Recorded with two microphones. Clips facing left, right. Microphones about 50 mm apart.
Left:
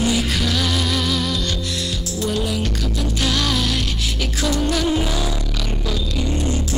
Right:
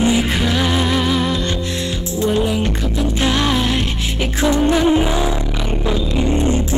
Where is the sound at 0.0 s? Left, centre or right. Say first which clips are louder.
Right 4 dB; right.